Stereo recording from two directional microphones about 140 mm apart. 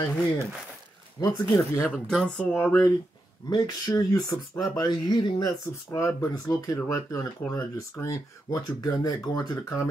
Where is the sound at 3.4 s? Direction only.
25° left (ahead or behind).